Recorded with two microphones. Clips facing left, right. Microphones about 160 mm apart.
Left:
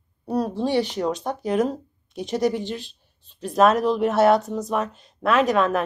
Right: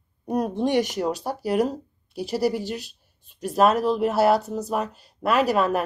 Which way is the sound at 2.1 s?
5° right (ahead or behind).